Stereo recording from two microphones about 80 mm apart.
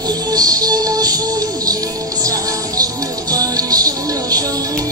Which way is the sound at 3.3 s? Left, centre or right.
Right.